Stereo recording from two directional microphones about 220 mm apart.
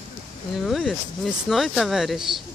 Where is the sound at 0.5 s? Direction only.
Centre (ahead or behind).